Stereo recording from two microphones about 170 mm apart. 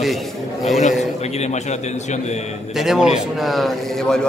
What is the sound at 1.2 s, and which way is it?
Speech, 40° left (ahead or behind).